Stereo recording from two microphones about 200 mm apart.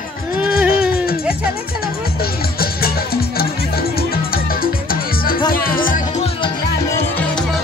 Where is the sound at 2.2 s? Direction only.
50° left (ahead or behind).